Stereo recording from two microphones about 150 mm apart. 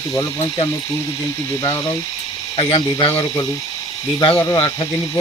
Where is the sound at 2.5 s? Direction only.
35° left (ahead or behind).